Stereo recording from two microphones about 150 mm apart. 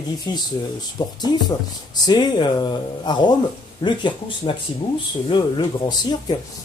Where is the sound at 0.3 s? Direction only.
25° left (ahead or behind).